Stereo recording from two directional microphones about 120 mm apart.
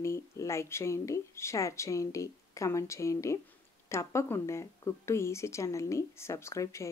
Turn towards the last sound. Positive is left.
turn(degrees=25)  # may be behind; listen again after turning